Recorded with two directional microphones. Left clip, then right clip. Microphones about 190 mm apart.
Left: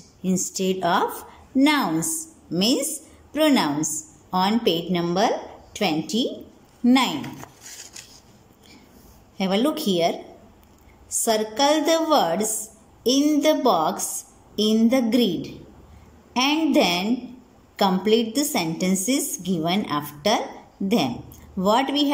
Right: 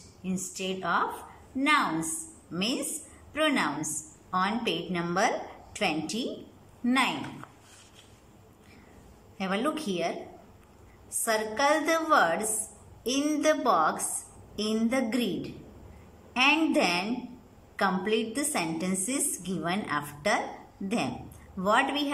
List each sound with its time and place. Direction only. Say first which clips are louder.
0.2 s a woman's voice: left 9 dB; 35° left (ahead or behind)
9.4 s a woman's voice: left 7 dB; 25° left (ahead or behind)
21.5 s a woman's voice: left 5 dB; 20° left (ahead or behind)